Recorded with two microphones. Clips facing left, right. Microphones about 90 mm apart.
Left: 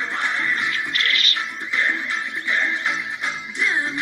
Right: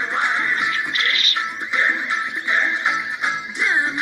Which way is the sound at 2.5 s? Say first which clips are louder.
Right 3 dB; 20° right (ahead or behind).